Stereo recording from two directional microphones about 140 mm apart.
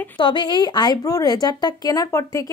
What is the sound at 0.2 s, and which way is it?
Speech, 35° left (ahead or behind).